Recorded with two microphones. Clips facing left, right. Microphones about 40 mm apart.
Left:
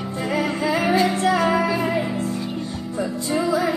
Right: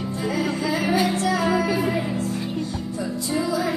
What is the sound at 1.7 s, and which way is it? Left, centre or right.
Music, centre.